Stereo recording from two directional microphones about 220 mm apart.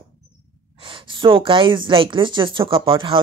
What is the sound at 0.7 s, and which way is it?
A woman's voice, 25° right (ahead or behind).